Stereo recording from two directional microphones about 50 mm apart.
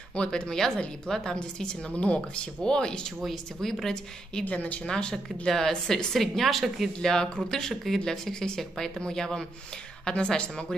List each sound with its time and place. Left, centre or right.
0.1 s speech: left
0.5 s a woman's voice: centre
3.2 s a woman's voice: centre
4.5 s speech: left
4.8 s a woman's voice: centre
6.1 s a woman's voice: centre